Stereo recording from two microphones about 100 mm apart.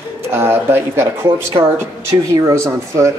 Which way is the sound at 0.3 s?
25° right (ahead or behind).